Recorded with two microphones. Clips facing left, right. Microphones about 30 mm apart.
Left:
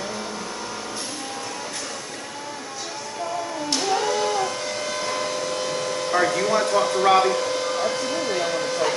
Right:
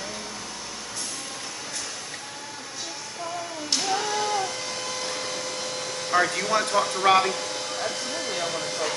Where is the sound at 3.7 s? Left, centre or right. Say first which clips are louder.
Left 3 dB; centre.